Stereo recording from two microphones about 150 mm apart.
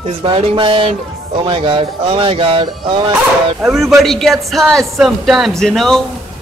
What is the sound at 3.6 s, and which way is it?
Speech, centre (ahead or behind).